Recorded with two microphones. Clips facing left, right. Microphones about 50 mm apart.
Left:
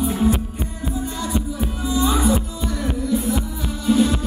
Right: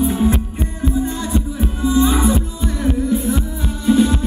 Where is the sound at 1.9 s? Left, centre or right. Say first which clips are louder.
Right 3 dB; right.